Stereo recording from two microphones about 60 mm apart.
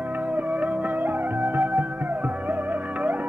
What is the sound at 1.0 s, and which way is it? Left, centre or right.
Music, right.